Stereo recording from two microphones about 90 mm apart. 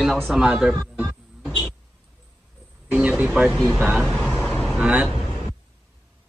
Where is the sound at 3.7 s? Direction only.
10° right (ahead or behind).